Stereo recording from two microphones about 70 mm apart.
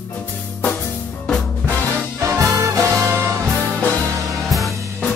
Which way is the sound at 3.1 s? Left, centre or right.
Right.